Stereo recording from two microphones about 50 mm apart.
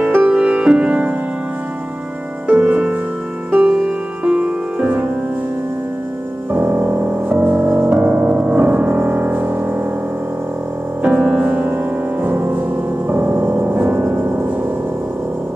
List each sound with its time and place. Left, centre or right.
0.0 s music: right
0.4 s music: right
2.4 s music: right
3.8 s music: centre
6.5 s music: right
7.3 s music: right
11.0 s music: right
11.7 s music: right